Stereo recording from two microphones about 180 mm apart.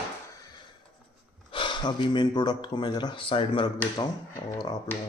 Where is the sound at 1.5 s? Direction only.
25° left (ahead or behind).